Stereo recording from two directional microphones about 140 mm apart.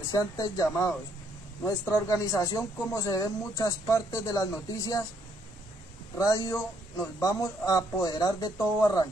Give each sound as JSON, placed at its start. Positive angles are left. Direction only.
{"t": 0.1, "sound": "speech", "side_deg": 25}
{"t": 6.1, "sound": "speech", "side_deg": 25}